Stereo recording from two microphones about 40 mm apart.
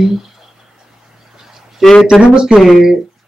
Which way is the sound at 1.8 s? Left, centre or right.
Centre.